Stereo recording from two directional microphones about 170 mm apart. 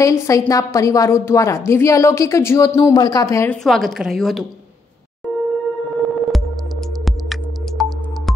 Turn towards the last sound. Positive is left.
turn(degrees=0)  # may be behind; listen again after turning